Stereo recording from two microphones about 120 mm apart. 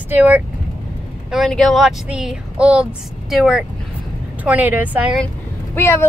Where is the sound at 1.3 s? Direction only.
Centre (ahead or behind).